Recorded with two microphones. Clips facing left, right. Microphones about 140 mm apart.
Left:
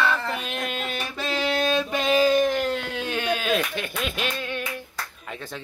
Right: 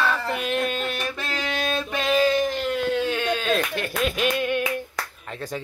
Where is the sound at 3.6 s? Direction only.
40° right (ahead or behind).